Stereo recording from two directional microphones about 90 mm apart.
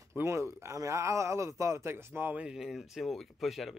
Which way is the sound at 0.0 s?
30° right (ahead or behind).